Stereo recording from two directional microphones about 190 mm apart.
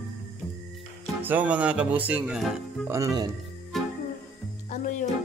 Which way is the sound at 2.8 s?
15° right (ahead or behind).